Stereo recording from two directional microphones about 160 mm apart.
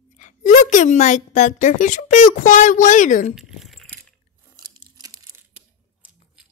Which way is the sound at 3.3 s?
Centre (ahead or behind).